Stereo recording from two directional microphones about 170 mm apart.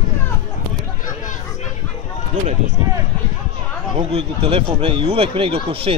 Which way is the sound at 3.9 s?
35° right (ahead or behind).